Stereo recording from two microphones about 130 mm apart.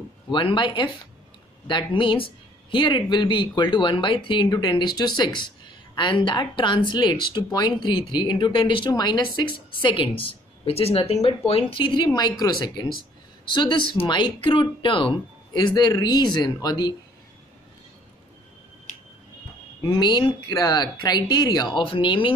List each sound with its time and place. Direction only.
0.3 s speech: 40° left (ahead or behind)
19.8 s speech: 35° left (ahead or behind)